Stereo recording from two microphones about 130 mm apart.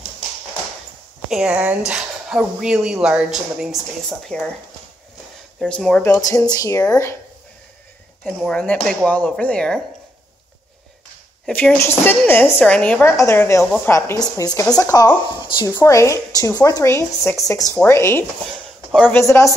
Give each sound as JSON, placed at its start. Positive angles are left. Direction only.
{"t": 1.3, "sound": "speech", "side_deg": -5}
{"t": 5.6, "sound": "speech", "side_deg": 5}
{"t": 6.0, "sound": "a woman's voice", "side_deg": 25}
{"t": 8.2, "sound": "speech", "side_deg": 0}
{"t": 11.4, "sound": "speech", "side_deg": 10}
{"t": 13.0, "sound": "a woman's voice", "side_deg": 20}